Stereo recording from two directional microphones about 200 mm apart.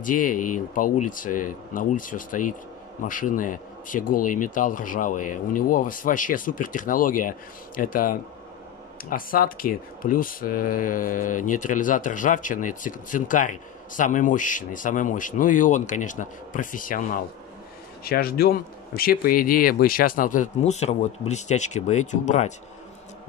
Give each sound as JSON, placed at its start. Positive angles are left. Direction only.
{"t": 0.0, "sound": "speech", "side_deg": 40}